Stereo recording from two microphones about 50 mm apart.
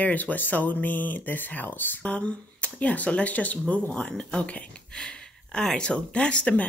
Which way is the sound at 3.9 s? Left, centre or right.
Centre.